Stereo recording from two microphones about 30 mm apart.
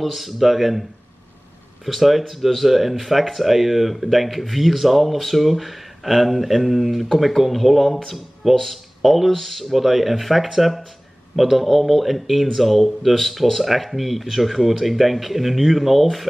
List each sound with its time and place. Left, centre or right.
0.0 s speech: centre
1.9 s speech: centre